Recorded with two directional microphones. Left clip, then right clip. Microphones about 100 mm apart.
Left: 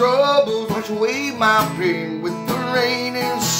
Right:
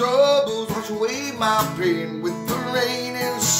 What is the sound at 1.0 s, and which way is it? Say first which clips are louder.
Music: left 5 dB; 5° right (ahead or behind).